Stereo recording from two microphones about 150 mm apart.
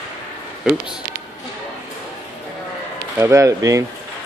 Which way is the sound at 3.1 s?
20° right (ahead or behind).